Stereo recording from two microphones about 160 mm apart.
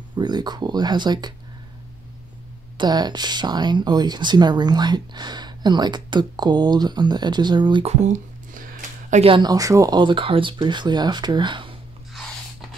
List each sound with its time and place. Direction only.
0.1 s speech: 25° right (ahead or behind)
2.8 s speech: 25° right (ahead or behind)
7.8 s speech: 45° right (ahead or behind)
9.1 s speech: 35° right (ahead or behind)